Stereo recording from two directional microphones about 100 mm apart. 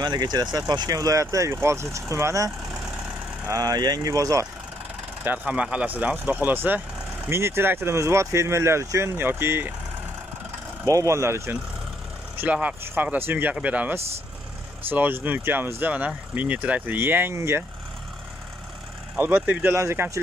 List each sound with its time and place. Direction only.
0.0 s speech: 45° right (ahead or behind)
3.5 s speech: 40° right (ahead or behind)
5.2 s speech: 15° right (ahead or behind)
10.9 s speech: 30° right (ahead or behind)
12.4 s speech: 15° right (ahead or behind)
19.1 s speech: 20° right (ahead or behind)